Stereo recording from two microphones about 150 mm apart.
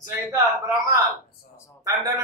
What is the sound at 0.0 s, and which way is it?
A man's voice, 20° right (ahead or behind).